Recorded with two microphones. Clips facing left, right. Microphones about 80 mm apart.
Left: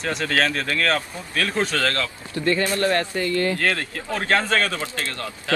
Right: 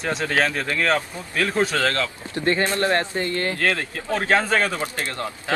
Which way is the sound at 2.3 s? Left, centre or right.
Right.